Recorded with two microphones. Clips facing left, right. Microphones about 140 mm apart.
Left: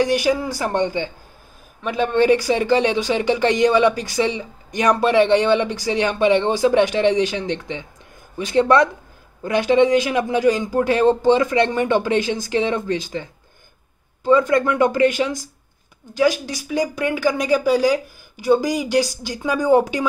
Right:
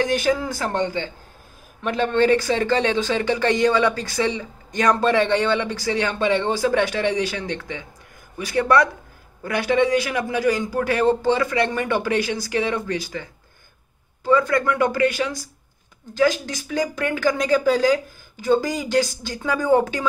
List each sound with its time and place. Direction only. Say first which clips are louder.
0.0 s a man's voice: left 2 dB; 15° left (ahead or behind)